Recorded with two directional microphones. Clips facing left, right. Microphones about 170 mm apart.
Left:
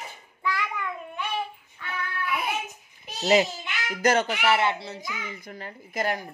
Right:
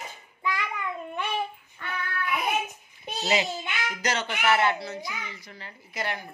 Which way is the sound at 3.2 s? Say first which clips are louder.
Left 5 dB; 45° left (ahead or behind).